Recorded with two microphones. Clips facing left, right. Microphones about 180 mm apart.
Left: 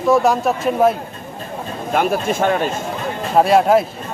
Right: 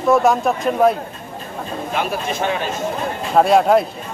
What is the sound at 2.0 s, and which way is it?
Speech, 50° left (ahead or behind).